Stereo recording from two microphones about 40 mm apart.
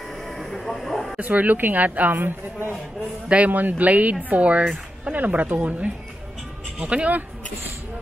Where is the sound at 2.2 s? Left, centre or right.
Right.